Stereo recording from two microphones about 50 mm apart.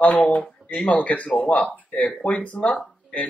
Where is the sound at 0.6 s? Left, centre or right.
Right.